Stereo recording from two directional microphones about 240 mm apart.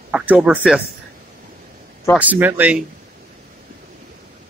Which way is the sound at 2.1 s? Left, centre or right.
Centre.